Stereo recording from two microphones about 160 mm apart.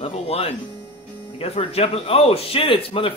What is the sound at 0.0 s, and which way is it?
A man's voice, 35° left (ahead or behind).